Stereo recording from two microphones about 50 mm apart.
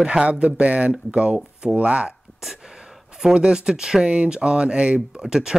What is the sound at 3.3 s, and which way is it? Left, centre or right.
Speech, centre.